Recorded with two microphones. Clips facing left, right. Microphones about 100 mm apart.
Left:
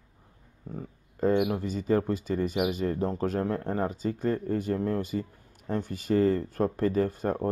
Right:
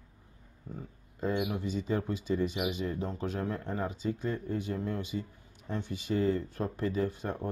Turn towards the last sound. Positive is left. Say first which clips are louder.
# left 6 dB
turn(degrees=45)  # may be behind; listen again after turning